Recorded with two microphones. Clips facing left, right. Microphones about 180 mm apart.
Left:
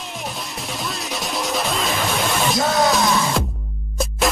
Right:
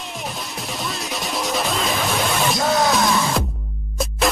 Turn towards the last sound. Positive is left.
turn(degrees=0)  # may be behind; listen again after turning